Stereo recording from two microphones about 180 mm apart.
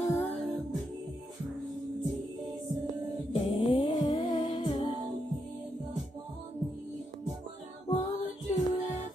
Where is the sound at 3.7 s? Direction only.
25° left (ahead or behind).